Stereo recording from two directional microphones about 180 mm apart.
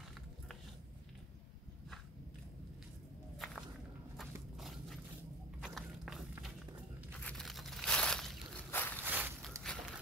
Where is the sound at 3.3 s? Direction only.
Centre (ahead or behind).